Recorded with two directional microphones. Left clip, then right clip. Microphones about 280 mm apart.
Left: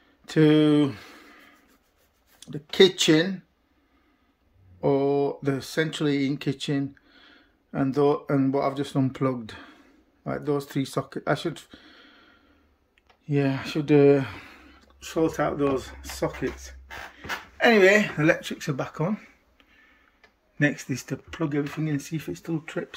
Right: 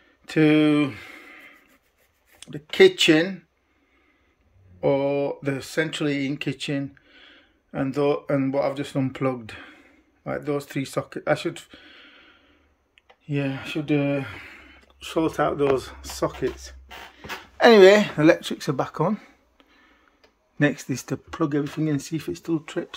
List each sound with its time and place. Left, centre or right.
0.2 s a sound: centre
2.4 s speech: centre
4.7 s speech: centre
13.3 s speech: centre
15.0 s speech: centre
20.5 s speech: centre